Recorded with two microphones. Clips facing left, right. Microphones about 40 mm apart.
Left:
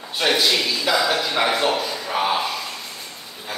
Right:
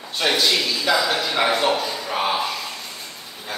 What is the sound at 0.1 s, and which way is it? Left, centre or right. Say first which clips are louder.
A man's voice: left 1 dB; centre.